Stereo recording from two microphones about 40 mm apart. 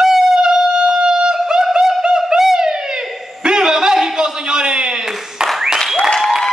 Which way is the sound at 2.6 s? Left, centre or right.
Centre.